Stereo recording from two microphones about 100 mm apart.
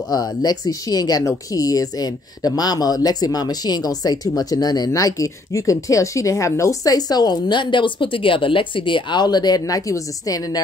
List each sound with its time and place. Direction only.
0.1 s speech: 40° left (ahead or behind)